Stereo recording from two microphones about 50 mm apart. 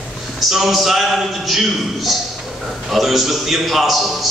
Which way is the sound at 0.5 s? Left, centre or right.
Centre.